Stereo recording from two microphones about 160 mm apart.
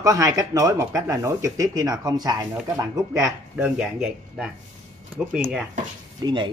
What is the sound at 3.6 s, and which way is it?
Speech, 5° right (ahead or behind).